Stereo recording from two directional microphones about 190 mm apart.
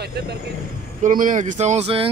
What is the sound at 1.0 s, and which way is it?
Speech, 45° right (ahead or behind).